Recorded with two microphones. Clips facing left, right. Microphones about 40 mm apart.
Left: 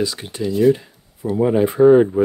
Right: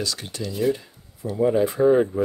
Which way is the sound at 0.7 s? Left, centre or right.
Left.